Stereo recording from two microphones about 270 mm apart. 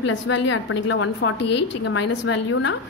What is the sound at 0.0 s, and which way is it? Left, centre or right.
A woman's voice, left.